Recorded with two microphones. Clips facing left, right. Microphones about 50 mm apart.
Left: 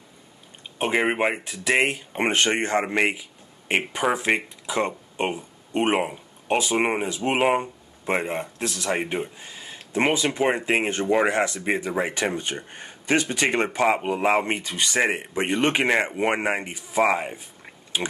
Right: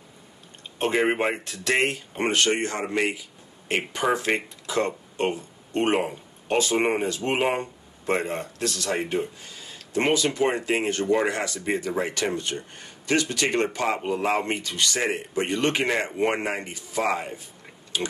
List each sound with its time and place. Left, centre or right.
0.7 s speech: centre
3.9 s speech: centre